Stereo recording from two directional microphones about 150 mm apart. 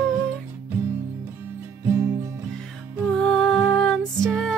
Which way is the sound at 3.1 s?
5° left (ahead or behind).